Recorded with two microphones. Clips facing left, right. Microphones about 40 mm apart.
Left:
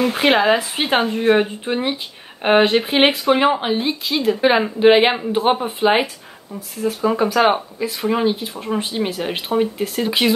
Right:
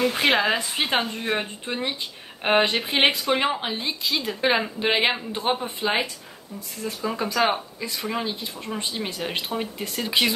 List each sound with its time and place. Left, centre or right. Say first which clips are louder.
0.0 s speech: left 5 dB; centre